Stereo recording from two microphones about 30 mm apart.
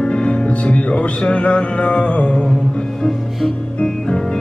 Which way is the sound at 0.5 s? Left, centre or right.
Left.